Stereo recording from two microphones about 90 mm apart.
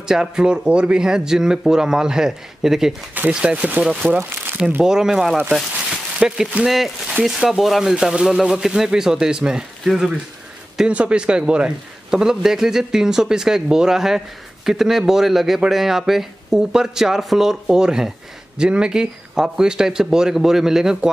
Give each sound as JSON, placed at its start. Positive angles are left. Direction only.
{"t": 0.0, "sound": "a man's voice", "side_deg": -5}
{"t": 4.2, "sound": "speech", "side_deg": -25}
{"t": 4.8, "sound": "a man's voice", "side_deg": -5}